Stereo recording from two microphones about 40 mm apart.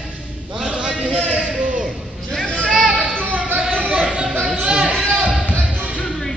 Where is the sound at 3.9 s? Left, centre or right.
Right.